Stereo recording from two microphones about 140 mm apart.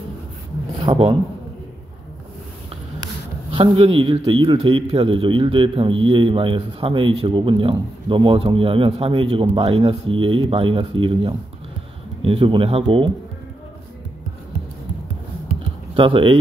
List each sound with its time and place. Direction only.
0.9 s a sound: 40° right (ahead or behind)
3.5 s a man's voice: 40° right (ahead or behind)
16.0 s a man's voice: 40° right (ahead or behind)